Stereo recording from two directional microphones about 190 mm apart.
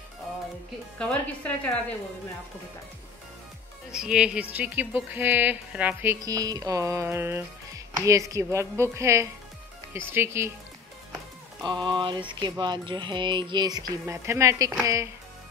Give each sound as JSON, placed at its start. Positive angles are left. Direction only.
{"t": 0.9, "sound": "a woman's voice", "side_deg": 5}
{"t": 3.9, "sound": "speech", "side_deg": -5}
{"t": 11.6, "sound": "music", "side_deg": -25}